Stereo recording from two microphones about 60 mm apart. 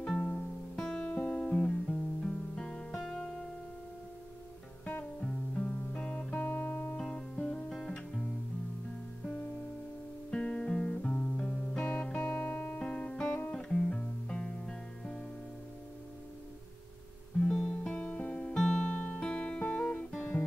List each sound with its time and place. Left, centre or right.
0.0 s music: centre
0.7 s guitar: centre
1.0 s guitar: left
3.0 s music: centre
4.8 s music: left
7.0 s music: centre
7.7 s guitar: centre
9.2 s music: left
10.3 s guitar: centre
11.3 s music: left
17.5 s music: centre
18.9 s guitar: left